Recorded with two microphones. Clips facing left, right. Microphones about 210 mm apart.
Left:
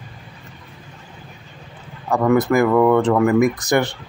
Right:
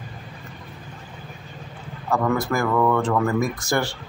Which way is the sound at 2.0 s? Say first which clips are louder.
Left 6 dB; 15° left (ahead or behind).